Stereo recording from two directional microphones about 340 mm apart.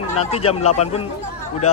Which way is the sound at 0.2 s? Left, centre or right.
Centre.